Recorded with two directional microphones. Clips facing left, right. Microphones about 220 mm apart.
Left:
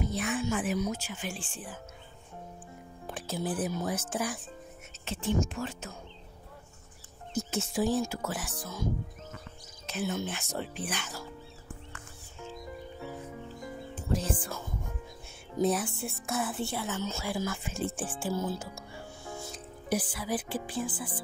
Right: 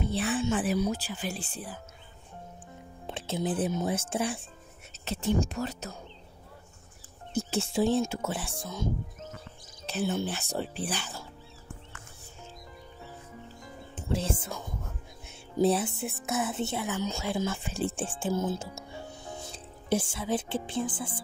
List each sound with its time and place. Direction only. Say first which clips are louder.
0.0 s speech: right 2 dB; 30° right (ahead or behind)
3.1 s speech: right 3 dB; 25° right (ahead or behind)
5.0 s speech: right 2 dB; 40° right (ahead or behind)
7.3 s speech: right 3 dB; 30° right (ahead or behind)
13.9 s speech: right 1 dB; 25° right (ahead or behind)
15.5 s a woman's voice: right 3 dB; 30° right (ahead or behind)